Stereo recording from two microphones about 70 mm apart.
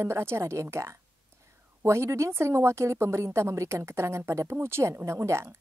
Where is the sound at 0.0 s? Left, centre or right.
Right.